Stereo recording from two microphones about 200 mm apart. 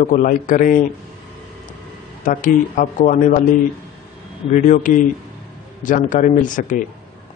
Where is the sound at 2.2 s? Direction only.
40° left (ahead or behind).